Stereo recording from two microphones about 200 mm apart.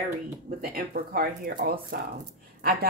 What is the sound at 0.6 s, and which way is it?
A woman's voice, 50° right (ahead or behind).